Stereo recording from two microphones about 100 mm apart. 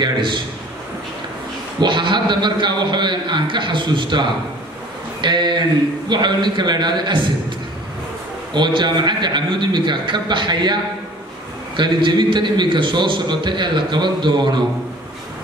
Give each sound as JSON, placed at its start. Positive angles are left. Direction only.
{"t": 0.0, "sound": "a man's voice", "side_deg": -50}
{"t": 1.8, "sound": "a man's voice", "side_deg": -50}
{"t": 8.5, "sound": "a man's voice", "side_deg": -50}